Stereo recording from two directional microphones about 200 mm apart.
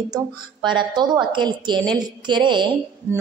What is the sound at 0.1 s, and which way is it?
A woman's voice, 25° right (ahead or behind).